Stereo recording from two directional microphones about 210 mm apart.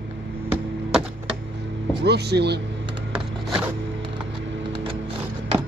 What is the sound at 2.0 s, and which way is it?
Speech, 50° right (ahead or behind).